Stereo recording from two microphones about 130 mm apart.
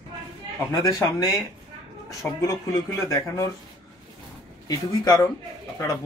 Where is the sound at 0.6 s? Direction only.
20° left (ahead or behind).